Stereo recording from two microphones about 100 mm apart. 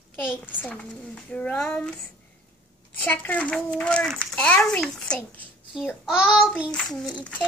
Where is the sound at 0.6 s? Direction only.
15° left (ahead or behind).